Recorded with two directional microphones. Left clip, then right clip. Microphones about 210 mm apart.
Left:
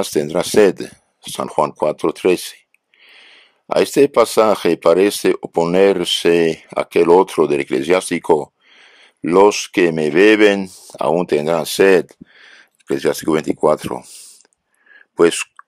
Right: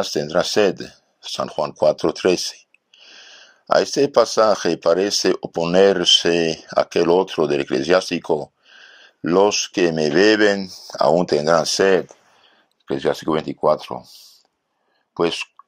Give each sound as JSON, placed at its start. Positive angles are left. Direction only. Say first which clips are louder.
{"t": 0.0, "sound": "speech", "louder": "left 1 dB", "side_deg": 25}
{"t": 1.8, "sound": "a sound", "louder": "even", "side_deg": 20}
{"t": 4.4, "sound": "speech", "louder": "left 3 dB", "side_deg": 20}
{"t": 15.1, "sound": "speech", "louder": "left 7 dB", "side_deg": 40}